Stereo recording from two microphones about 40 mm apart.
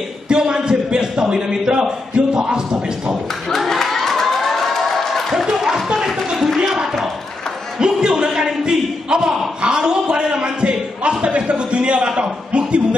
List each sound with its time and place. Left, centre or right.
0.3 s a man's voice: right
3.4 s a sound: centre; by 12.1 s right
12.2 s a man's voice: right